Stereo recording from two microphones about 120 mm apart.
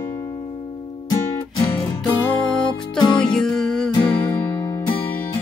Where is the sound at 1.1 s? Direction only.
40° left (ahead or behind).